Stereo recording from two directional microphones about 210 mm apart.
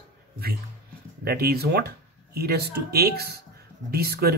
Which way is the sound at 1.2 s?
45° right (ahead or behind).